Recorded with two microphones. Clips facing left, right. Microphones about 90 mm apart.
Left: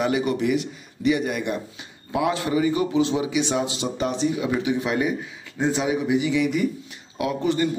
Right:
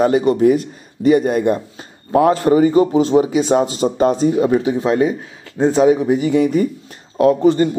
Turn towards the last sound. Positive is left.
turn(degrees=-35)  # may be behind; listen again after turning